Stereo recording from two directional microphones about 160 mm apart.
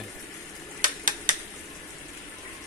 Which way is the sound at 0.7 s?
55° right (ahead or behind).